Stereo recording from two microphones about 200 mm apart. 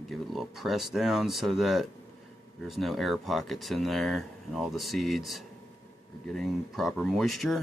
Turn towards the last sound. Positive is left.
turn(degrees=0)  # may be behind; listen again after turning